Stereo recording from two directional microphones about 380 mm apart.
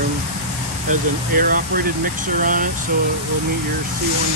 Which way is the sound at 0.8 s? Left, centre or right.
Right.